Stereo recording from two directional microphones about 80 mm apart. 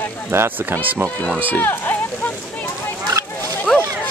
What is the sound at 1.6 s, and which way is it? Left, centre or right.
Speech, left.